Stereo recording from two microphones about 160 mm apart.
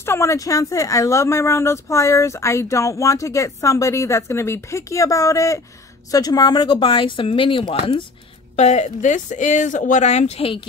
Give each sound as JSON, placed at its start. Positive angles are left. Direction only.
{"t": 0.0, "sound": "speech", "side_deg": 15}
{"t": 8.5, "sound": "speech", "side_deg": 45}